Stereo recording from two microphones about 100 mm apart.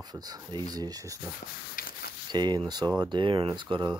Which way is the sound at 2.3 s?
45° right (ahead or behind).